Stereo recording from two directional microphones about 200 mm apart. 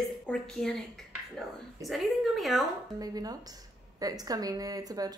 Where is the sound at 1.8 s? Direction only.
Centre (ahead or behind).